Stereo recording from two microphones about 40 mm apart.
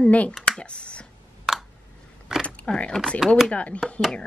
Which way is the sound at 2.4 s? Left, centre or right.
Left.